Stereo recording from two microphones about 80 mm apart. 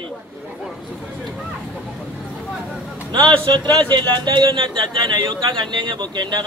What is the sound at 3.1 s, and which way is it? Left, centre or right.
A man's voice, right.